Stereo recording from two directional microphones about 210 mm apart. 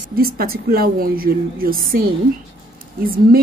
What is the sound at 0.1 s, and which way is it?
A woman's voice, 45° right (ahead or behind).